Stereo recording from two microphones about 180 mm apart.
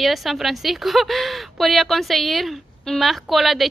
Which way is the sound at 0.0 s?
Centre (ahead or behind).